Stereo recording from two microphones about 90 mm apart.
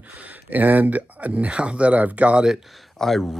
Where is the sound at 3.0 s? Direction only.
Centre (ahead or behind).